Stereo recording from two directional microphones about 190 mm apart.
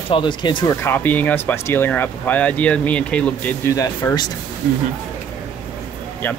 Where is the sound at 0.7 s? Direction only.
10° left (ahead or behind).